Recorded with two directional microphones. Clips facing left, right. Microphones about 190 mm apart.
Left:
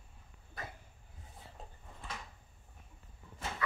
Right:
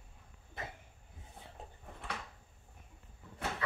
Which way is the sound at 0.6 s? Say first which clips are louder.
Right 1 dB; 25° right (ahead or behind).